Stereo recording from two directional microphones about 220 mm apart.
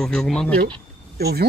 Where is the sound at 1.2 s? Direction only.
45° right (ahead or behind).